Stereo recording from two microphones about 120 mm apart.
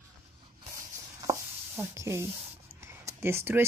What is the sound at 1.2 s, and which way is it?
Chopping, 25° right (ahead or behind).